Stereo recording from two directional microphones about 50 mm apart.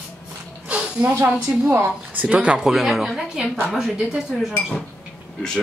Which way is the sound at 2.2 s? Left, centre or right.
Right.